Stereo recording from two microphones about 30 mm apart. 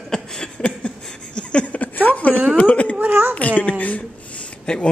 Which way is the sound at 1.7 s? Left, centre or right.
Left.